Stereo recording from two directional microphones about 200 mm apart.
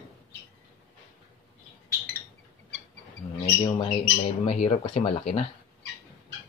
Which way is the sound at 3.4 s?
30° left (ahead or behind).